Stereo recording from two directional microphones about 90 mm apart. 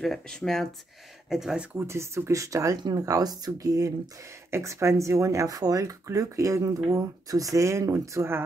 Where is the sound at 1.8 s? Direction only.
30° right (ahead or behind).